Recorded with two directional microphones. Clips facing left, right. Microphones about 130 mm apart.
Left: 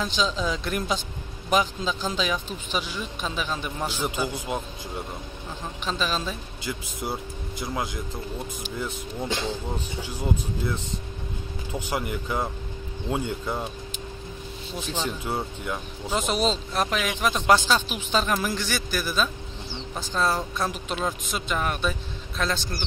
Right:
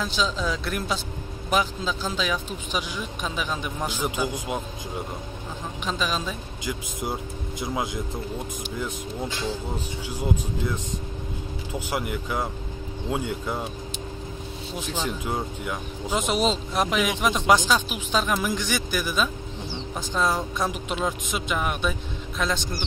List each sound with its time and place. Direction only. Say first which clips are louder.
0.0 s a man's voice: even; 5° right (ahead or behind)
5.9 s a man's voice: even; 10° right (ahead or behind)
10.0 s a man's voice: right 2 dB; 10° right (ahead or behind)
14.9 s a man's voice: even; 10° right (ahead or behind)
20.9 s a man's voice: right 1 dB; 10° right (ahead or behind)